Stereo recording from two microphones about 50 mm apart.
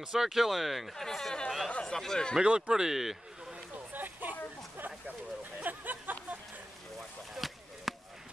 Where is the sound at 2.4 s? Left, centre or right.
Centre.